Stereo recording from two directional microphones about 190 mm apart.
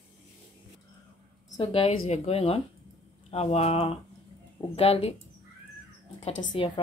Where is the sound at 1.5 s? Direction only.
30° left (ahead or behind).